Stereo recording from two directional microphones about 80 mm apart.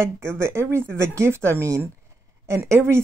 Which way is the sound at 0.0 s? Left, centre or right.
Right.